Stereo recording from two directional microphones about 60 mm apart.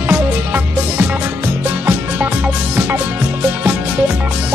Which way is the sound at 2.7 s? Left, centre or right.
Right.